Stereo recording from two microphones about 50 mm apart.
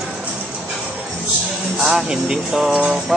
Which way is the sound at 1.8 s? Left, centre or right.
Centre.